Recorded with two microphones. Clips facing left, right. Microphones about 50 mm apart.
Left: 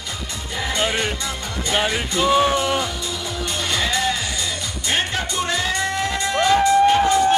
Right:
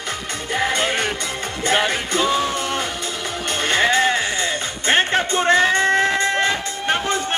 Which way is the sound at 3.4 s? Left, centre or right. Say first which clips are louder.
Right 6 dB; right.